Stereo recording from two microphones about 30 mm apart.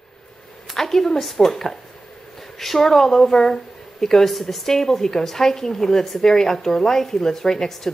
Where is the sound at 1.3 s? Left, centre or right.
Centre.